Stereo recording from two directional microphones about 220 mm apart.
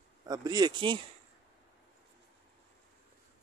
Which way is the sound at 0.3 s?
20° right (ahead or behind).